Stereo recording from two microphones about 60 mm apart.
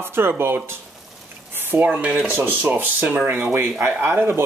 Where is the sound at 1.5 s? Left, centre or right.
Right.